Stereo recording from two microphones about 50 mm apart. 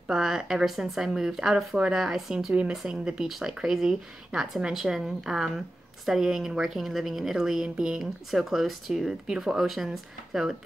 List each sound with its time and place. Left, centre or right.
0.1 s a woman's voice: centre
8.0 s a woman's voice: centre